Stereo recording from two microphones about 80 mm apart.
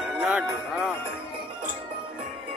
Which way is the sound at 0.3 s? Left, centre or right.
Centre.